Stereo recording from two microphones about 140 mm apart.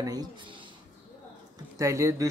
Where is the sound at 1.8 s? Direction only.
20° right (ahead or behind).